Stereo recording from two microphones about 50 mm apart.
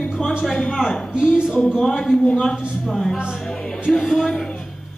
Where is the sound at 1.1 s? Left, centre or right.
Centre.